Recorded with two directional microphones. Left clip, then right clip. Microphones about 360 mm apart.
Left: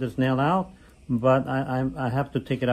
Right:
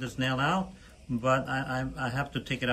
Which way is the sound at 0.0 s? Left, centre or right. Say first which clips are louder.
Left 5 dB; centre.